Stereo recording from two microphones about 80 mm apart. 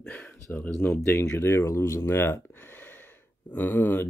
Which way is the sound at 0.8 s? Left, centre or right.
Left.